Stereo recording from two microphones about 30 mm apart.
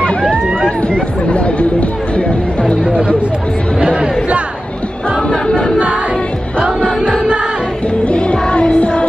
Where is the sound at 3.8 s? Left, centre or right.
Right.